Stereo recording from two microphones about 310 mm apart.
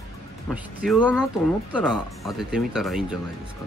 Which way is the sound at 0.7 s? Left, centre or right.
Centre.